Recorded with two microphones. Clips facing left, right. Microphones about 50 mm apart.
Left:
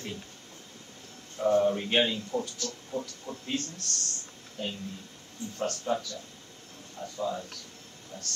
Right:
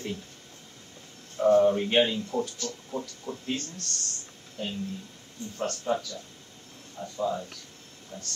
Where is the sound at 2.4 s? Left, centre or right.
Centre.